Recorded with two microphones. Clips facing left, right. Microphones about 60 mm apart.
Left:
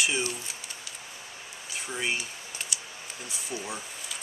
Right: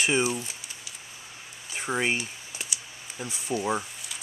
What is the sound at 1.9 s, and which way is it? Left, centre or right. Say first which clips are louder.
Speech: right 5 dB; right.